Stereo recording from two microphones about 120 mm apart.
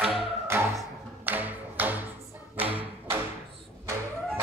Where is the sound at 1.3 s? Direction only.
15° right (ahead or behind).